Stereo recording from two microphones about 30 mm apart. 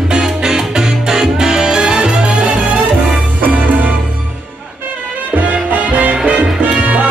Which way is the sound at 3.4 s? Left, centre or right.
Right.